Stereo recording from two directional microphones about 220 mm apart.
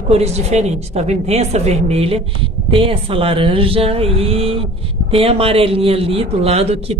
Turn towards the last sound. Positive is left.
turn(degrees=-25)  # may be behind; listen again after turning